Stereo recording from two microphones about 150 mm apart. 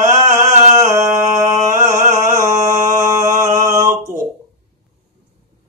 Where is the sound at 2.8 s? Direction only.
20° right (ahead or behind).